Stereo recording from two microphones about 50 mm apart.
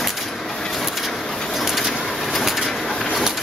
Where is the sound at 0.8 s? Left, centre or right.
Centre.